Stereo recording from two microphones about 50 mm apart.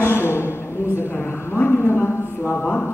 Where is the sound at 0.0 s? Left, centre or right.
Left.